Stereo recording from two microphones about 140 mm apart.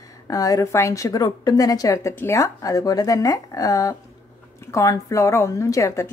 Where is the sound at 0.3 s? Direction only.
25° left (ahead or behind).